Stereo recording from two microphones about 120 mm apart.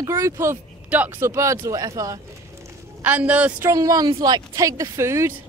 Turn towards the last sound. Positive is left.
turn(degrees=-25)  # may be behind; listen again after turning